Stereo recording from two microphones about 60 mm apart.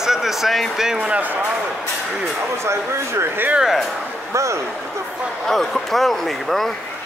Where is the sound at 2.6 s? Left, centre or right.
Right.